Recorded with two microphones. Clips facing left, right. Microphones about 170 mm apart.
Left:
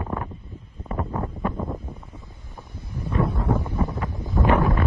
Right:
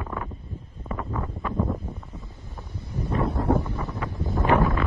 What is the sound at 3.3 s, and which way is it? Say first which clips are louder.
Wind noise: right 2 dB; 65° right (ahead or behind).